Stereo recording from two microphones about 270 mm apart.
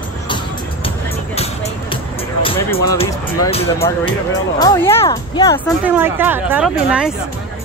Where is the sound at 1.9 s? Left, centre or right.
Centre.